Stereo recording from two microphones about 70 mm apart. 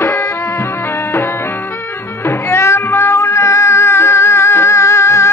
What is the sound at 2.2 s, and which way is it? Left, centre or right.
Cat, left.